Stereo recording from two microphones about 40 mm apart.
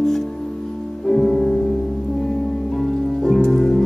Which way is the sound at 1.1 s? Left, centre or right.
Centre.